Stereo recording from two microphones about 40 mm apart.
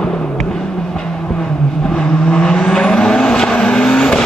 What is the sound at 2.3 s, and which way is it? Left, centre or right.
Vehicle, centre.